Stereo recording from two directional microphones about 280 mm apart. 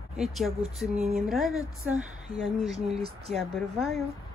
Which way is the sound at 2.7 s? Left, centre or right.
Right.